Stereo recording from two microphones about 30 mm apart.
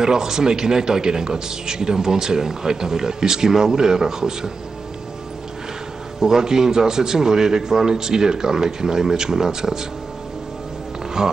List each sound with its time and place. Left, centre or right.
0.0 s a man's voice: centre
6.1 s a man's voice: centre
11.2 s a man's voice: right